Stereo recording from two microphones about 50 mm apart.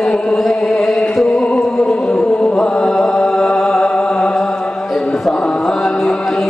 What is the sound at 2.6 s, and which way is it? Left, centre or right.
Mantra, centre.